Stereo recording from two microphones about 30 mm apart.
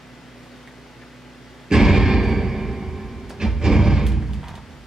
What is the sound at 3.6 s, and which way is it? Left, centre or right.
Music, centre.